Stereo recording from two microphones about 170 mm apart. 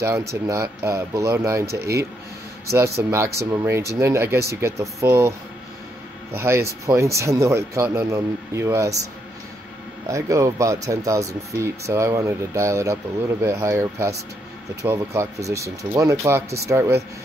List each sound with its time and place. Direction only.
0.0 s a man's voice: 15° right (ahead or behind)
6.3 s speech: 15° right (ahead or behind)
10.0 s speech: 20° right (ahead or behind)